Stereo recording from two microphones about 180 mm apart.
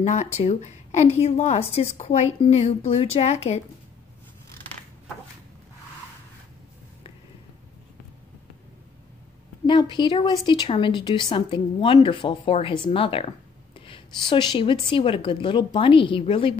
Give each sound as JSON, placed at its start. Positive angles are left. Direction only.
{"t": 0.0, "sound": "a woman's voice", "side_deg": 40}
{"t": 9.7, "sound": "speech", "side_deg": 25}